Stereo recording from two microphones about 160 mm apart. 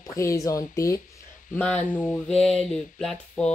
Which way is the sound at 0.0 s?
20° left (ahead or behind).